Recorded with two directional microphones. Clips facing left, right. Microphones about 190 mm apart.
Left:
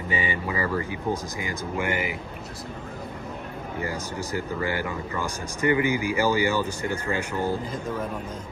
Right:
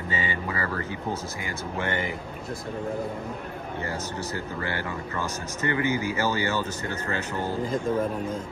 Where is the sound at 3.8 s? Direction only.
15° left (ahead or behind).